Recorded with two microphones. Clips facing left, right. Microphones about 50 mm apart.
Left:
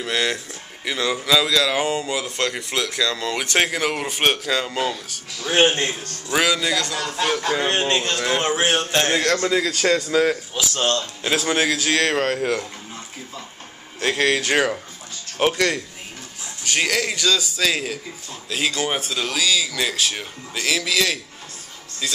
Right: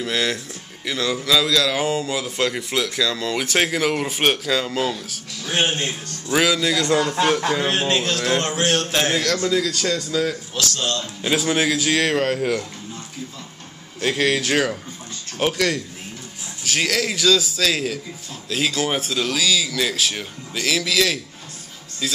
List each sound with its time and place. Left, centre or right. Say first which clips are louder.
0.0 s speech: even; centre
5.4 s speech: left 5 dB; left
6.2 s speech: right 1 dB; centre
6.9 s speech: right 5 dB; right
7.5 s speech: even; centre
8.4 s speech: left 1 dB; centre
8.9 s speech: left 1 dB; centre
9.2 s a man's voice: left 1 dB; left
11.5 s speech: left 1 dB; centre
13.9 s speech: even; centre